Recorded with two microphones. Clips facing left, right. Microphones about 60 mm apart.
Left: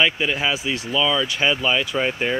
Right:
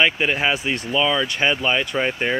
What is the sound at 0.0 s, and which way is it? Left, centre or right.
Speech, right.